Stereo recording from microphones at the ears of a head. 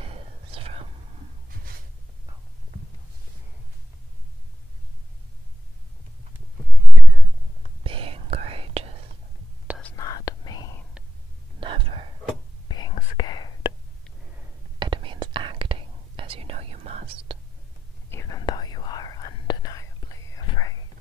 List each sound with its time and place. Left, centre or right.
0.0 s whispering: right
7.8 s whispering: right
9.8 s whispering: left
11.5 s whispering: right
12.6 s whispering: left
14.8 s whispering: right
18.1 s whispering: left